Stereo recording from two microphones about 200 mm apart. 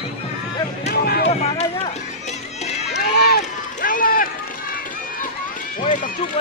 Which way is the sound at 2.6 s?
35° left (ahead or behind).